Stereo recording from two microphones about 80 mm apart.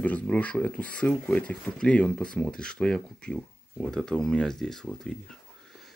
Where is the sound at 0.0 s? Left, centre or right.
Centre.